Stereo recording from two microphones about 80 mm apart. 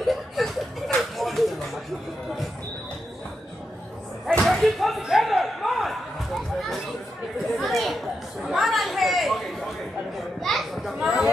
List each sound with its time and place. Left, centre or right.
0.0 s chuckle: centre
4.3 s slam: centre
7.5 s chatter: centre
10.4 s children playing: centre